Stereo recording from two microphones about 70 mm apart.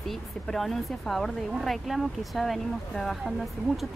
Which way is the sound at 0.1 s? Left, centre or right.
Centre.